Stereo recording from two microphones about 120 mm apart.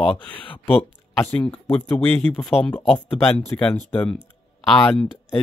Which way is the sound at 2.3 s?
Centre (ahead or behind).